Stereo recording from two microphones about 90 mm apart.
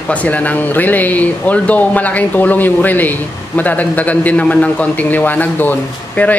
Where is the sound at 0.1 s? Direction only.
15° left (ahead or behind).